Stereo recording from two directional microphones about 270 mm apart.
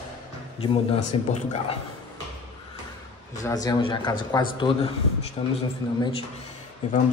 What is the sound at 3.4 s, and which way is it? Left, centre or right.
A man's voice, centre.